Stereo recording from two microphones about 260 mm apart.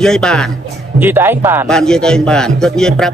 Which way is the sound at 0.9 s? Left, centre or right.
Centre.